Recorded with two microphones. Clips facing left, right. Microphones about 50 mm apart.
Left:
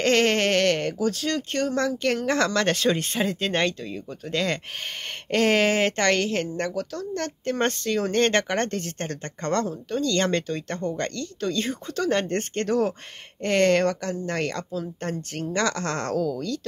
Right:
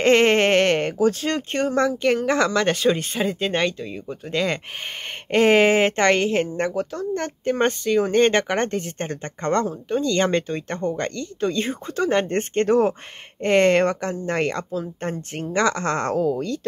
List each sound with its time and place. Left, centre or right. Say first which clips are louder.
0.0 s a woman's voice: right 5 dB; right